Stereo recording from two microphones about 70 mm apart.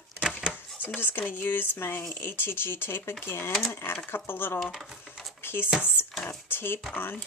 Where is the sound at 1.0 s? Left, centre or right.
Left.